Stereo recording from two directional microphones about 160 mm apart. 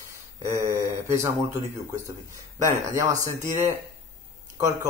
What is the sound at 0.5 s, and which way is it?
Speech, 20° right (ahead or behind).